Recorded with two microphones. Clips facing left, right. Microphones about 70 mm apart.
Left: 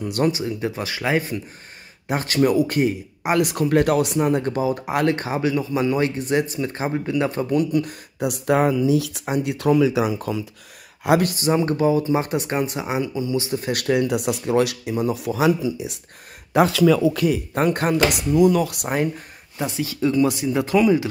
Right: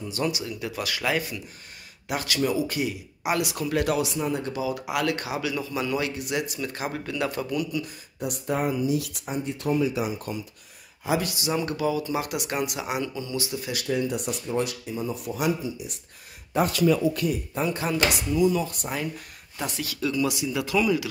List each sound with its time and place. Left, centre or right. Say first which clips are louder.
0.0 s speech: left 7 dB; left
0.3 s speech: left 7 dB; left
8.2 s speech: left 8 dB; left
9.2 s speech: left 7 dB; left
11.1 s speech: left 8 dB; left
11.5 s speech: left 7 dB; left
13.5 s speech: left 7 dB; left
13.7 s speech: left 6 dB; left
17.6 s speech: left 6 dB; left
18.9 s speech: left 8 dB; left
19.6 s speech: left 7 dB; left